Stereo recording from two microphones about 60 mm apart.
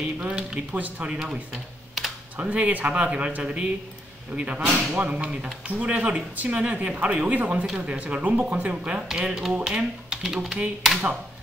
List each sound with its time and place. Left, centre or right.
0.2 s speech: centre
0.7 s speech: right
1.5 s typing: centre
2.5 s speech: right
7.6 s speech: centre
8.0 s speech: right
9.1 s speech: centre